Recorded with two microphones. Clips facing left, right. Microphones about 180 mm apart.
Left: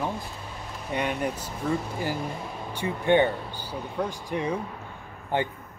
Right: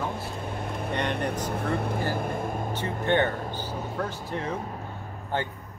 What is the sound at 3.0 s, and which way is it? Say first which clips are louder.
Speech: left 3 dB; 15° left (ahead or behind).